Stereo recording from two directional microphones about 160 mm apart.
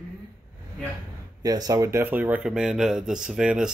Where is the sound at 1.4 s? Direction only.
25° right (ahead or behind).